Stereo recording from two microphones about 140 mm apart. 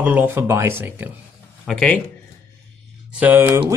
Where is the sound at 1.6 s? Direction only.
5° left (ahead or behind).